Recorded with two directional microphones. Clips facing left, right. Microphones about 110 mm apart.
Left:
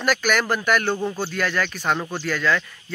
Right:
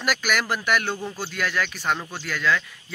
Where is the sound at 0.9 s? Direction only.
20° left (ahead or behind).